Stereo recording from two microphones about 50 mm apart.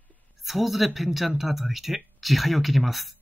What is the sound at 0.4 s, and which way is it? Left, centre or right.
Speech, centre.